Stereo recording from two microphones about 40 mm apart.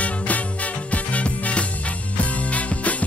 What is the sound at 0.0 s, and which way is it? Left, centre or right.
Music, left.